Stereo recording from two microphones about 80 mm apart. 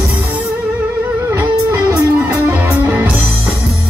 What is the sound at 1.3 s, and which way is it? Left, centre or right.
Music, right.